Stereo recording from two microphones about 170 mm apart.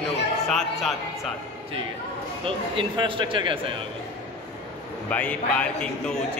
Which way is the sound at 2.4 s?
30° right (ahead or behind).